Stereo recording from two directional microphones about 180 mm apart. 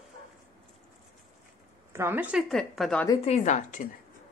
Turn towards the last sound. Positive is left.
turn(degrees=45)  # may be behind; listen again after turning